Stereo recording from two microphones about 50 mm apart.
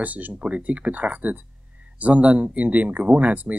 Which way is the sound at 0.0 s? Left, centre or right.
Right.